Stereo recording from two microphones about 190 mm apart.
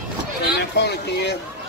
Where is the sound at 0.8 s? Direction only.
60° left (ahead or behind).